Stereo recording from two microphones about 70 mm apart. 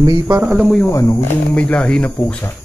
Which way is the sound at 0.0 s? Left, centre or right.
Right.